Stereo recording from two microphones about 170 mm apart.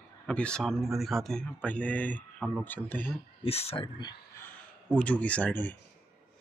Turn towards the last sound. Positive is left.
turn(degrees=10)  # may be behind; listen again after turning